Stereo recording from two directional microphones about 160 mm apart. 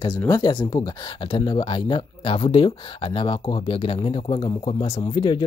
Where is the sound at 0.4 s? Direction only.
30° left (ahead or behind).